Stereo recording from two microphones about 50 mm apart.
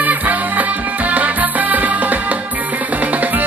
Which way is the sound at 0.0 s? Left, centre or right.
Right.